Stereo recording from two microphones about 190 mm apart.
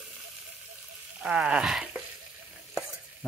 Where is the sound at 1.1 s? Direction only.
5° right (ahead or behind).